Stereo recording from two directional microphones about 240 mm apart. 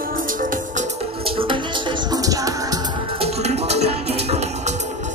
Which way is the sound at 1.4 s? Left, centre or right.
Centre.